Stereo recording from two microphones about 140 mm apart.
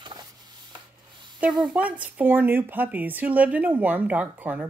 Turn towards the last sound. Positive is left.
turn(degrees=-10)  # may be behind; listen again after turning